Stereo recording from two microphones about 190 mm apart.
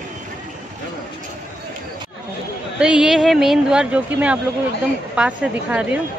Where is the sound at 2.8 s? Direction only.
5° right (ahead or behind).